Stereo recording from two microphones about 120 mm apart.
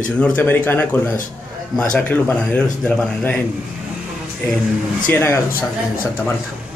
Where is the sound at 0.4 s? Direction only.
15° left (ahead or behind).